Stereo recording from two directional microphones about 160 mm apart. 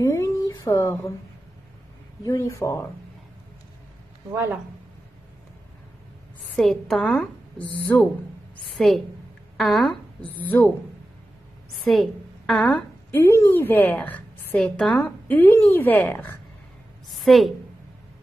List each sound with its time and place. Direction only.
0.0 s a sound: 20° left (ahead or behind)
2.2 s speech: 20° left (ahead or behind)
4.3 s speech: 15° right (ahead or behind)
6.5 s a woman's voice: centre (ahead or behind)
11.8 s a woman's voice: centre (ahead or behind)
17.1 s a woman's voice: centre (ahead or behind)